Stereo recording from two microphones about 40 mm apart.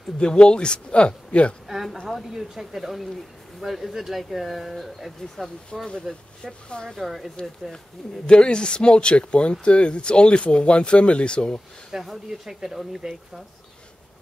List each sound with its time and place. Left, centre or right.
0.2 s speech: left
1.7 s a woman's voice: centre
5.7 s speech: centre
7.0 s speech: centre
8.3 s speech: left
11.9 s speech: centre